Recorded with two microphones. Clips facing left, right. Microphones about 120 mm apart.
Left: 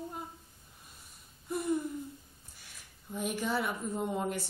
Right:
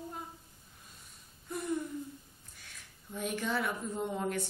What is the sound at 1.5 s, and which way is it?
Speech, 10° left (ahead or behind).